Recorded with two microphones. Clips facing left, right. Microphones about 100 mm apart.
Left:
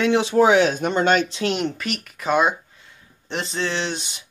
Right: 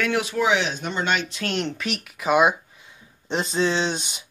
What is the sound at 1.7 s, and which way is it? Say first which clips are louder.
Speech: even; centre (ahead or behind).